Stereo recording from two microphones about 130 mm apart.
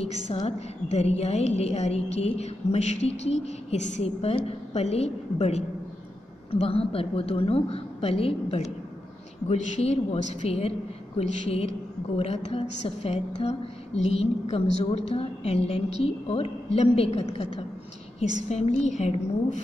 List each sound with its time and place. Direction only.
0.3 s a woman's voice: 55° left (ahead or behind)
18.5 s a woman's voice: 60° left (ahead or behind)